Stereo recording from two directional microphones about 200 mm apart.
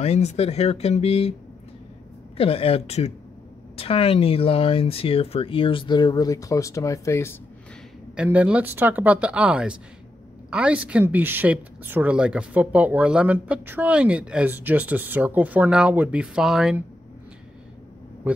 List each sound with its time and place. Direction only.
0.0 s speech: 35° left (ahead or behind)
2.3 s speech: 30° left (ahead or behind)
8.2 s speech: 5° right (ahead or behind)
18.3 s speech: 10° right (ahead or behind)